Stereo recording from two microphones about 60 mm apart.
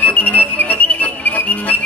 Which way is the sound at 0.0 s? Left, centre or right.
Left.